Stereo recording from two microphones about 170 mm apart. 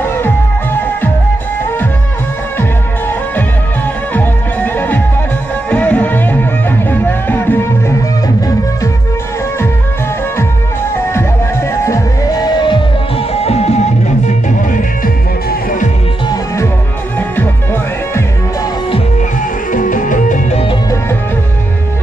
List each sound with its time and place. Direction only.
3.1 s music: 10° left (ahead or behind)
11.8 s music: 20° left (ahead or behind)
13.3 s music: 35° left (ahead or behind)
19.7 s music: 50° left (ahead or behind)